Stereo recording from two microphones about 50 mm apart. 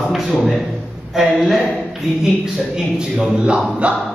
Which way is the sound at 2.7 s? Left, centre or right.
Centre.